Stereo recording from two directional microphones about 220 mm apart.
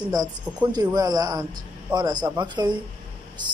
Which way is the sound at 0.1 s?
15° right (ahead or behind).